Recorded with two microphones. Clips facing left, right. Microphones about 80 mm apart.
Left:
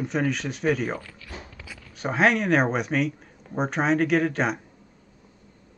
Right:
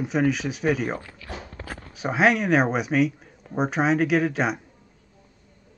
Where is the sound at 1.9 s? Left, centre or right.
Centre.